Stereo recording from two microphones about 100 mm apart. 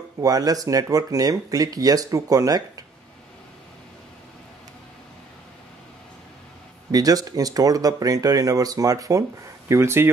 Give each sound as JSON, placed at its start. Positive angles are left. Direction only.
{"t": 0.2, "sound": "speech", "side_deg": -35}
{"t": 6.9, "sound": "speech", "side_deg": -40}